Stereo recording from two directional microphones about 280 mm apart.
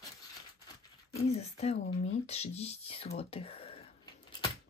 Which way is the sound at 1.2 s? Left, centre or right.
Left.